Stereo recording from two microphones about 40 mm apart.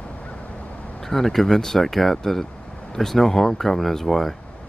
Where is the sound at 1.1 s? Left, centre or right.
Centre.